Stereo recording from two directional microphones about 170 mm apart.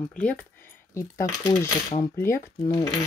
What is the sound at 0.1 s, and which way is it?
Speech, 5° left (ahead or behind).